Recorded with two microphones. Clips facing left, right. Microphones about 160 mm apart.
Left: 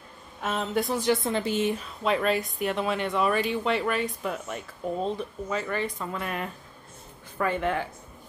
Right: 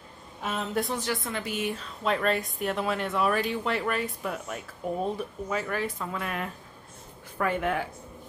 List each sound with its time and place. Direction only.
0.4 s speech: centre (ahead or behind)
1.0 s speech: 25° left (ahead or behind)
2.0 s speech: centre (ahead or behind)